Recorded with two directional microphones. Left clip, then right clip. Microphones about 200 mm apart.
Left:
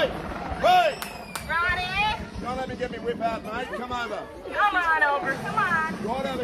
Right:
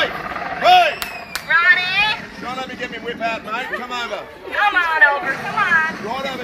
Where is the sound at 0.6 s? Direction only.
35° right (ahead or behind).